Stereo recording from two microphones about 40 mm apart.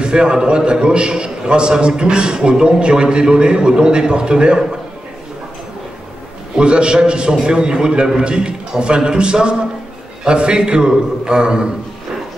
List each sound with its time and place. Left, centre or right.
0.0 s a man's voice: right
6.5 s a man's voice: right